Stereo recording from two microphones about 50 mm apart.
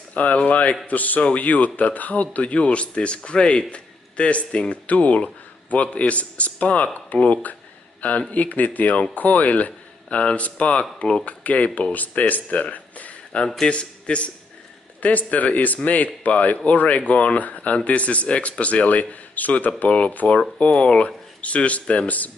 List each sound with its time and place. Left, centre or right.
0.1 s a man's voice: left